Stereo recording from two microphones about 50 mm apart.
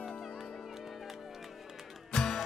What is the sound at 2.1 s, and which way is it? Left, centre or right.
Music, centre.